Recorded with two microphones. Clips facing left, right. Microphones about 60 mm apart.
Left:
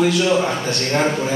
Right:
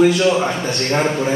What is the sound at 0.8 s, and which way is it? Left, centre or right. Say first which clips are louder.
Speech: right 1 dB; centre.